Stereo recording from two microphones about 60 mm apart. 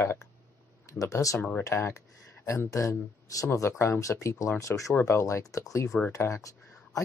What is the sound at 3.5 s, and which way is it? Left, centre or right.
Speech, left.